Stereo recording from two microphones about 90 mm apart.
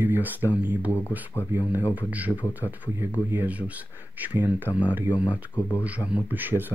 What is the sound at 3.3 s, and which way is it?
Speech, 15° right (ahead or behind).